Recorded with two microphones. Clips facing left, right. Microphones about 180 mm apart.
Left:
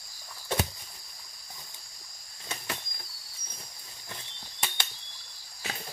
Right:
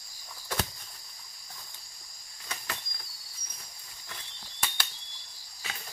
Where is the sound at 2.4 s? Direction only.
25° left (ahead or behind).